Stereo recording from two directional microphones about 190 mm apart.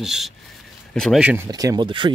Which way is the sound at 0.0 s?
Centre (ahead or behind).